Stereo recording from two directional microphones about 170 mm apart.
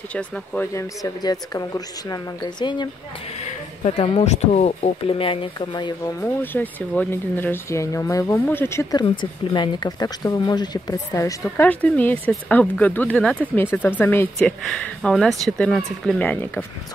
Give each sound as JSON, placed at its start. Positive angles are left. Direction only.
{"t": 0.1, "sound": "speech", "side_deg": 5}
{"t": 3.3, "sound": "speech", "side_deg": 45}
{"t": 6.2, "sound": "speech", "side_deg": 10}
{"t": 9.0, "sound": "speech", "side_deg": 25}